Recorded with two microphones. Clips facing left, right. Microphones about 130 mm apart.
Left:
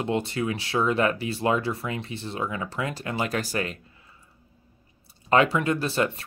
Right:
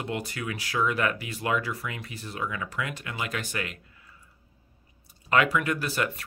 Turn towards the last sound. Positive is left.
turn(degrees=30)  # may be behind; listen again after turning